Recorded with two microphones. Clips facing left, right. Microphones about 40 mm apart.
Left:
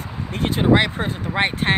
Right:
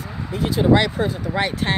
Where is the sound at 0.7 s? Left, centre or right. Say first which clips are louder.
Even; left.